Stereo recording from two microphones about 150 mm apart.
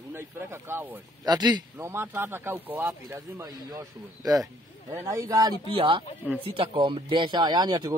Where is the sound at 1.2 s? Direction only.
25° right (ahead or behind).